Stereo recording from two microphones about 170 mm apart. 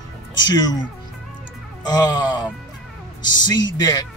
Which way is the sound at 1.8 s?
25° left (ahead or behind).